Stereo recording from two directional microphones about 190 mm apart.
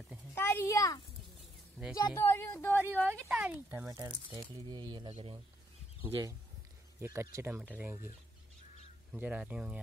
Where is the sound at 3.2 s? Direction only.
10° right (ahead or behind); by 5.4 s 25° right (ahead or behind).